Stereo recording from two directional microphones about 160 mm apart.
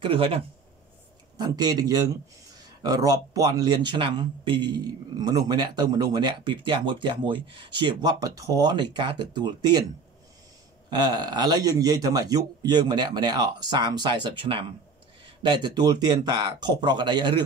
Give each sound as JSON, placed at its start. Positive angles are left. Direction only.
{"t": 0.0, "sound": "speech", "side_deg": -35}
{"t": 1.4, "sound": "a man's voice", "side_deg": -25}
{"t": 10.9, "sound": "a man's voice", "side_deg": -25}